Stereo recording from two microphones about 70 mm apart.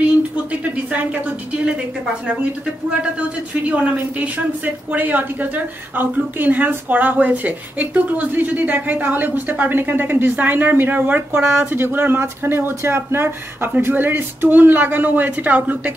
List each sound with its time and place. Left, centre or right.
3.2 s a woman's voice: centre